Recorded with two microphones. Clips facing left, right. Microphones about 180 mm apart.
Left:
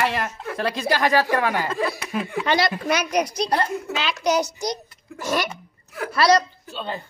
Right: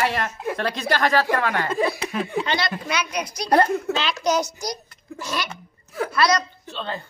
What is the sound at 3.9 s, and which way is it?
Speech, 10° left (ahead or behind).